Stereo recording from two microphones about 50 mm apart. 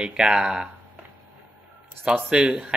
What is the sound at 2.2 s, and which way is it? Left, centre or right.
Speech, centre.